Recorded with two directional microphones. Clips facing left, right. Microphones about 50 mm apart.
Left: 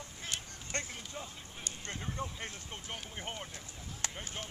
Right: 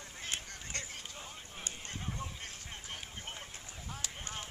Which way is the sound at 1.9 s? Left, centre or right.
Left.